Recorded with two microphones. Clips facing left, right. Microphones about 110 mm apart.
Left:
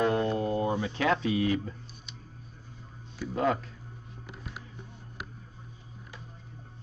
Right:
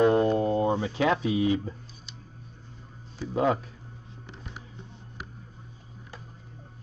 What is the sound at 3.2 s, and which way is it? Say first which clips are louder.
Speech: right 3 dB; 15° right (ahead or behind).